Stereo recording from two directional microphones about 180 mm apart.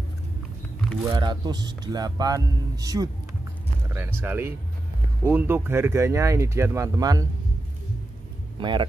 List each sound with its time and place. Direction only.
1.0 s speech: 25° right (ahead or behind)
8.5 s speech: 25° right (ahead or behind)